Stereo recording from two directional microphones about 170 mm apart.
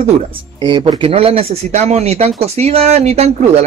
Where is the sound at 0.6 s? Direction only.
25° right (ahead or behind).